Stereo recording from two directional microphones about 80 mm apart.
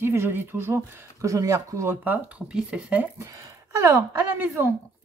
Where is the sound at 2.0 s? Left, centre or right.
Centre.